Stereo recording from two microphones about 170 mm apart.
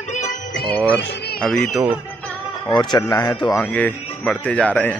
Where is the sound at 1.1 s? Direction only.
75° left (ahead or behind).